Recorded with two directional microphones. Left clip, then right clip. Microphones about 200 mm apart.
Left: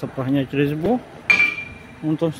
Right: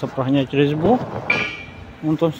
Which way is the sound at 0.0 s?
15° left (ahead or behind).